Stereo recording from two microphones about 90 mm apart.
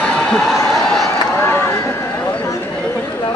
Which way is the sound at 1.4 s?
25° left (ahead or behind).